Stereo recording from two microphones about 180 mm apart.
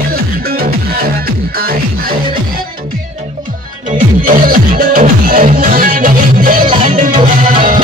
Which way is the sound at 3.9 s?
50° right (ahead or behind).